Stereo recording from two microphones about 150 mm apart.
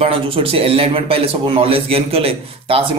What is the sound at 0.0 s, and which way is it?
A man's voice, 40° right (ahead or behind).